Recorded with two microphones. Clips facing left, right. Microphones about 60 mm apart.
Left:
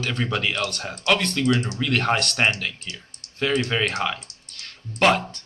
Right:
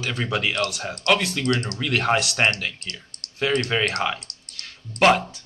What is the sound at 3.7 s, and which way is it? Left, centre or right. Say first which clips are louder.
Speech: right 1 dB; centre.